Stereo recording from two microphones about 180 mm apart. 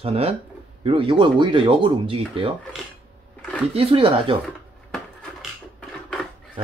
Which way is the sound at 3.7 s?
30° right (ahead or behind).